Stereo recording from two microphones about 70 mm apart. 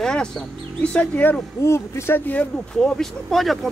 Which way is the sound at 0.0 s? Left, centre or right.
Centre.